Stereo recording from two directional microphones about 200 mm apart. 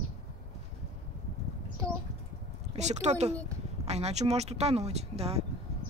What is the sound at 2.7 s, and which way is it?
Speech, 35° right (ahead or behind).